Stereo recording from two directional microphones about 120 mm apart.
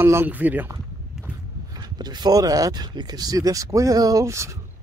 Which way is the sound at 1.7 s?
35° right (ahead or behind).